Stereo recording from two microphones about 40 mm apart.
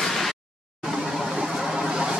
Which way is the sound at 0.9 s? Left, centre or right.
Centre.